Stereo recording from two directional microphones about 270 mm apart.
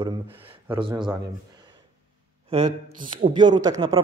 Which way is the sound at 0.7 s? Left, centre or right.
Centre.